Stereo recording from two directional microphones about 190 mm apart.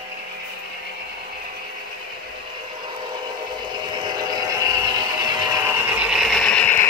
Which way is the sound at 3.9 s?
25° right (ahead or behind).